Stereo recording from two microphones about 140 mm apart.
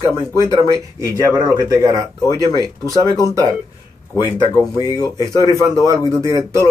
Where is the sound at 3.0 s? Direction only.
25° left (ahead or behind).